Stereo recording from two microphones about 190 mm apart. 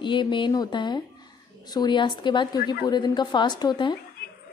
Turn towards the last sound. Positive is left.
turn(degrees=25)  # may be behind; listen again after turning